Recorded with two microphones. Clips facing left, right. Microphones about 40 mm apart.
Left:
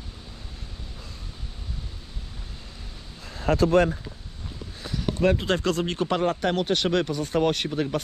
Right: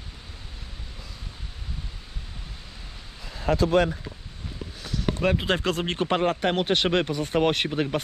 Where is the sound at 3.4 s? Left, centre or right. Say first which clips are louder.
Left 1 dB; left.